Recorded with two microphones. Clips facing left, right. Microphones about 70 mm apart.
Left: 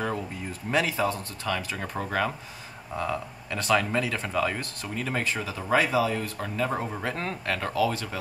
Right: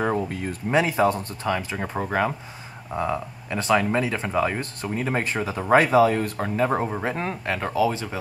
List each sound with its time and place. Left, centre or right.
0.3 s speech: right
0.7 s speech: right